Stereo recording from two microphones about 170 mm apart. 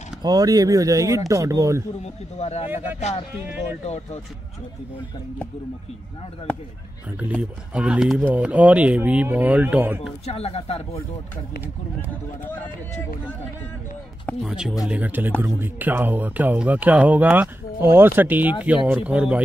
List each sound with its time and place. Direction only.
0.2 s speech: 20° right (ahead or behind)
2.3 s speech: 40° left (ahead or behind)
2.7 s speech: 10° right (ahead or behind)
3.8 s speech: 40° left (ahead or behind)
7.2 s speech: 10° right (ahead or behind)
10.2 s speech: 35° left (ahead or behind)
14.2 s speech: 5° right (ahead or behind)